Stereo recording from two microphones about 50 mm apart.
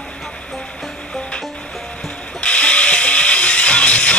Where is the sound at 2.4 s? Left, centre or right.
Left.